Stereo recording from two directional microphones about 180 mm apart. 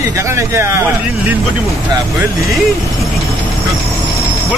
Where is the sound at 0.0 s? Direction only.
15° right (ahead or behind).